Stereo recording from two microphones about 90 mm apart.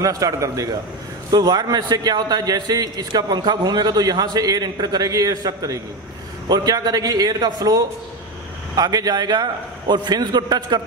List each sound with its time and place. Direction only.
0.0 s a man's voice: 40° right (ahead or behind)